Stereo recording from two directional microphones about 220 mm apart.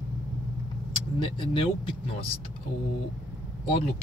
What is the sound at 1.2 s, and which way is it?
Speech, 20° left (ahead or behind).